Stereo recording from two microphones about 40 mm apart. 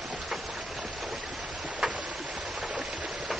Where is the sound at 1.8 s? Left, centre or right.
Centre.